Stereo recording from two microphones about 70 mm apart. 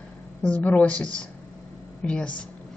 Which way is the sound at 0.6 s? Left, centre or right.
Left.